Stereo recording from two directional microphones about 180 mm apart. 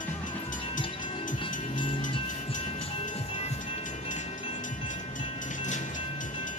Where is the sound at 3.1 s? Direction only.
35° left (ahead or behind).